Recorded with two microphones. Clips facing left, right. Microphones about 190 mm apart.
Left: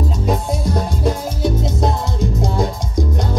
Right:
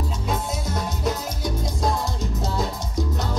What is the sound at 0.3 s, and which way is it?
Music, 30° left (ahead or behind).